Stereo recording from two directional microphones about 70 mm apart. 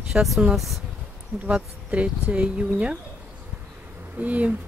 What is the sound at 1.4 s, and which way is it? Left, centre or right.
Speech, centre.